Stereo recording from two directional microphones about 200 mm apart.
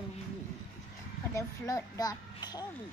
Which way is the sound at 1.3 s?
15° left (ahead or behind).